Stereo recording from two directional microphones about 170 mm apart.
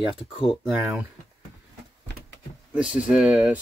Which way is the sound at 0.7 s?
10° right (ahead or behind).